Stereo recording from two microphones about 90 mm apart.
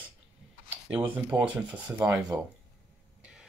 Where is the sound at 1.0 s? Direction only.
15° right (ahead or behind).